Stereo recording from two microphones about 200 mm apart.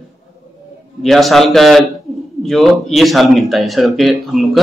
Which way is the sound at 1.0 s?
Centre (ahead or behind).